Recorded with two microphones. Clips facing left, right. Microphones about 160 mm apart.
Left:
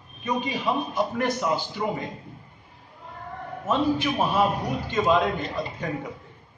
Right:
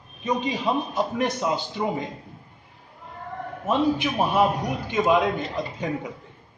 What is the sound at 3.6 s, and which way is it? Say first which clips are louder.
A man's voice: right 1 dB; 15° right (ahead or behind).